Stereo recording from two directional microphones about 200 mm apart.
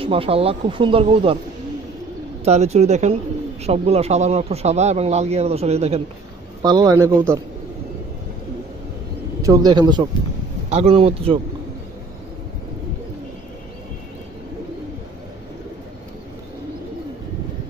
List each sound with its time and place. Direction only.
0.0 s speech: 25° right (ahead or behind)
2.4 s speech: 35° right (ahead or behind)
6.6 s speech: 20° right (ahead or behind)
9.4 s speech: 20° right (ahead or behind)